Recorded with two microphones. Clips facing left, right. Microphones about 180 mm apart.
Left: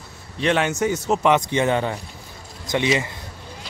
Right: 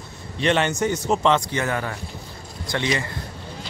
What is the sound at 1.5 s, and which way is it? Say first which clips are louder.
Speech: left 5 dB; 20° left (ahead or behind).